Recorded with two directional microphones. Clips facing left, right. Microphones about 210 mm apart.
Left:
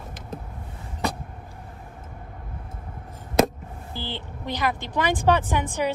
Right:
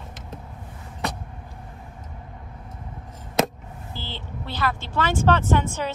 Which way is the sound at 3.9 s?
15° left (ahead or behind).